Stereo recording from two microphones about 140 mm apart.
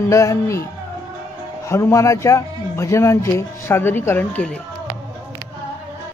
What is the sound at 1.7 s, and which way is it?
A man's voice, 20° left (ahead or behind).